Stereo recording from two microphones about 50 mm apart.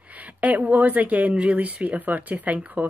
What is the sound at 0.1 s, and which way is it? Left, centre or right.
Speech, right.